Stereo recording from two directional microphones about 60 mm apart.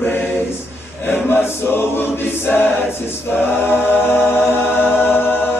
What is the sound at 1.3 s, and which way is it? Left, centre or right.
Choir, left.